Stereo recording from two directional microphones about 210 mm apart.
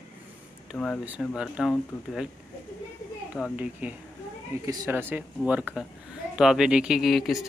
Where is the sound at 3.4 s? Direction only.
Centre (ahead or behind).